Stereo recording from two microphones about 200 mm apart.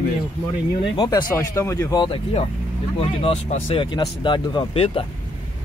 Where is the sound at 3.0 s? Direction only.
30° left (ahead or behind).